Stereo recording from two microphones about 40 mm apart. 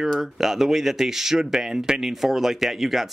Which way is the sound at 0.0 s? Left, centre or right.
Centre.